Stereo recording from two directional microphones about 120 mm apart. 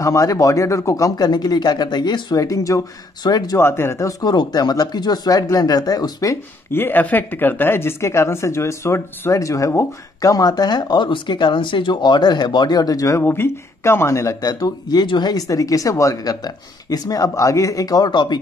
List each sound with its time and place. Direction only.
0.0 s a woman's voice: 25° left (ahead or behind)
3.5 s speech: 20° left (ahead or behind)
6.7 s a woman's voice: 15° left (ahead or behind)
13.2 s a woman's voice: 20° left (ahead or behind); by 18.4 s 40° left (ahead or behind)